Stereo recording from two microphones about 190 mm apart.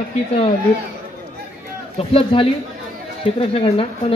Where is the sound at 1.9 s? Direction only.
30° left (ahead or behind).